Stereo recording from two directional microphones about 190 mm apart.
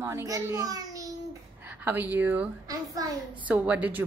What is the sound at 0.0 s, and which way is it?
A child's voice, 15° right (ahead or behind).